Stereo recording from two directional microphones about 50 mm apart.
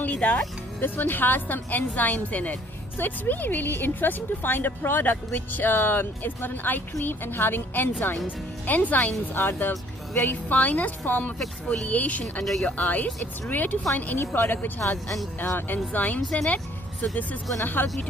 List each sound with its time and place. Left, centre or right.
0.0 s music: left
0.7 s a woman's voice: left
9.3 s a woman's voice: left
11.3 s speech: centre
11.9 s a woman's voice: left
16.2 s speech: centre
17.1 s a woman's voice: left